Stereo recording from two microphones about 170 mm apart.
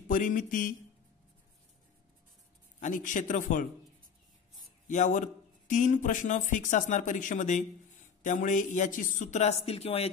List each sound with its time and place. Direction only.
0.1 s a man's voice: 50° left (ahead or behind)
2.8 s a man's voice: 50° left (ahead or behind)
4.8 s a man's voice: 45° left (ahead or behind)